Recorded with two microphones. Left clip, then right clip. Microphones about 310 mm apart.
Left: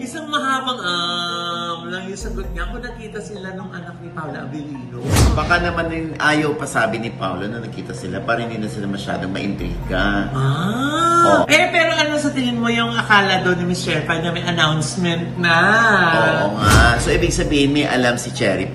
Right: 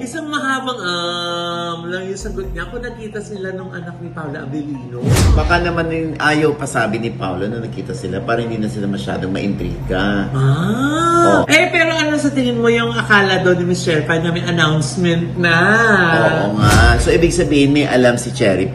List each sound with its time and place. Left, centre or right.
0.3 s a man's voice: centre
5.0 s speech: centre
8.3 s a man's voice: left
9.4 s speech: centre
10.3 s a man's voice: centre